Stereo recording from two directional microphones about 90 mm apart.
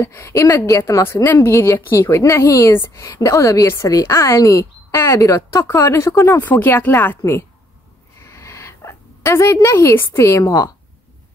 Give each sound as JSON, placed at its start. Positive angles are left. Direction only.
{"t": 0.0, "sound": "a woman's voice", "side_deg": 30}
{"t": 6.6, "sound": "a woman's voice", "side_deg": 25}
{"t": 8.3, "sound": "a sound", "side_deg": 30}